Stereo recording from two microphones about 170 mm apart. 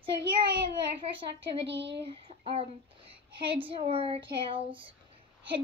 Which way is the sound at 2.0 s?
35° right (ahead or behind).